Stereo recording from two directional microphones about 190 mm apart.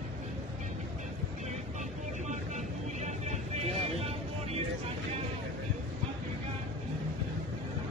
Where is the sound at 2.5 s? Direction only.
35° right (ahead or behind).